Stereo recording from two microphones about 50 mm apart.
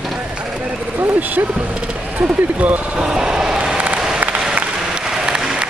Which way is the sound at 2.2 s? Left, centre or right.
Right.